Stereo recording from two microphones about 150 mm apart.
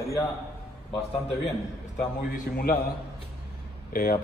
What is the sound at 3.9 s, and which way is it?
Speech, 70° left (ahead or behind).